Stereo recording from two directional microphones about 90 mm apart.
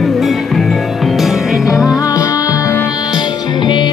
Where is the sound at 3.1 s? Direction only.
55° left (ahead or behind).